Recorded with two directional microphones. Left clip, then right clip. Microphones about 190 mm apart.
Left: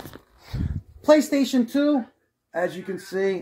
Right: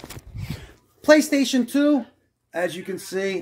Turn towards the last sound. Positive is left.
turn(degrees=0)  # may be behind; listen again after turning